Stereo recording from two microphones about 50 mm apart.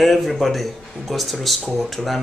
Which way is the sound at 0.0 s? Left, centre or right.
Centre.